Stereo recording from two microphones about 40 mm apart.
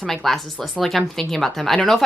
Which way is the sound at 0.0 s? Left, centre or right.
Centre.